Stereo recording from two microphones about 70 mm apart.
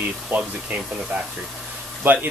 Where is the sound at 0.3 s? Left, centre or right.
Right.